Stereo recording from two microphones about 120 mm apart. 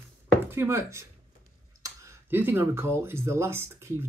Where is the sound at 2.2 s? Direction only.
15° right (ahead or behind).